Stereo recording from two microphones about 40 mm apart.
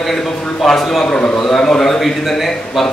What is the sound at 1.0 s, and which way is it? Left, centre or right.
Speech, left.